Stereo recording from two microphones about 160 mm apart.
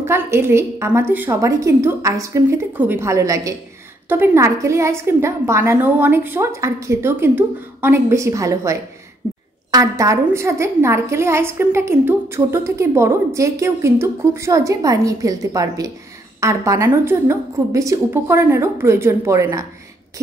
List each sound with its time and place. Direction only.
0.0 s a woman's voice: 15° right (ahead or behind)